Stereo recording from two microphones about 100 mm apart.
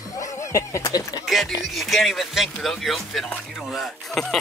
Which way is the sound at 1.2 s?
Centre (ahead or behind).